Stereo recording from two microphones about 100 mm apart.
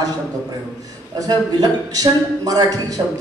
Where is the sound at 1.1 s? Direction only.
40° right (ahead or behind).